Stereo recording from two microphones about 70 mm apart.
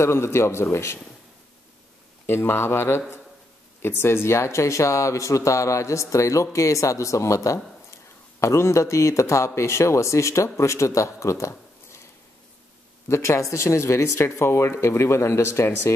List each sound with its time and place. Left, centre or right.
0.0 s speech: left
2.2 s speech: left
13.1 s speech: left